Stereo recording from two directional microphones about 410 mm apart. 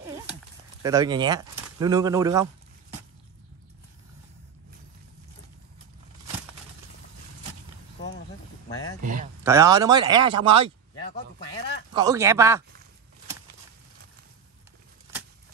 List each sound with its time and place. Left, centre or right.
0.8 s speech: centre
9.0 s a sound: centre
9.4 s speech: centre
11.1 s speech: centre
11.9 s speech: centre